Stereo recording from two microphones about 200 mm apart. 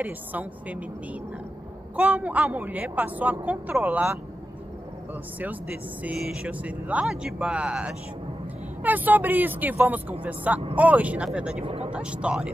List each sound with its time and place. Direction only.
0.0 s speech: 10° right (ahead or behind)
2.0 s speech: 5° right (ahead or behind)
5.4 s speech: 10° right (ahead or behind)
11.6 s speech: 30° right (ahead or behind)
11.9 s speech: 5° right (ahead or behind)